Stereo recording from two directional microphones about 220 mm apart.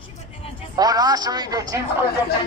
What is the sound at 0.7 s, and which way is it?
Speech, 15° right (ahead or behind).